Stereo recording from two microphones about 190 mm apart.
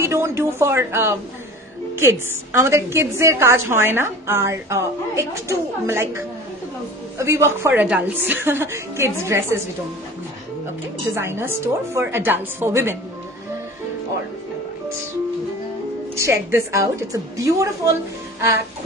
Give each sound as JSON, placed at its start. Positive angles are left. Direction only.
{"t": 0.0, "sound": "a woman's voice", "side_deg": -15}
{"t": 11.1, "sound": "a woman's voice", "side_deg": -10}
{"t": 16.2, "sound": "a woman's voice", "side_deg": -15}